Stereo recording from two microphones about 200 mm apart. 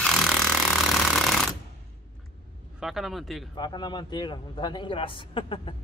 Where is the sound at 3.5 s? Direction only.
20° left (ahead or behind).